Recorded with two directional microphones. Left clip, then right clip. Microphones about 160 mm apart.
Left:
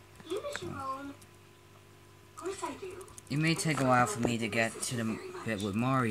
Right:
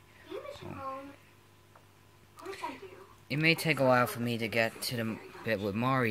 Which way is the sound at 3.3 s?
15° right (ahead or behind).